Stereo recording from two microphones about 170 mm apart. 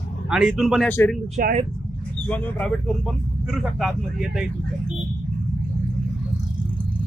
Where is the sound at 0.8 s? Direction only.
15° left (ahead or behind).